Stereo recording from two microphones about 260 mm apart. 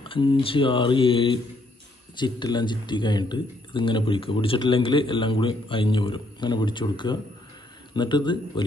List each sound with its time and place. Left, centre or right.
0.0 s speech: centre